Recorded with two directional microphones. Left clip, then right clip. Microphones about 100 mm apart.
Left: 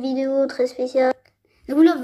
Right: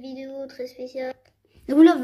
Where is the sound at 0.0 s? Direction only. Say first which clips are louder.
Left 13 dB; 15° left (ahead or behind).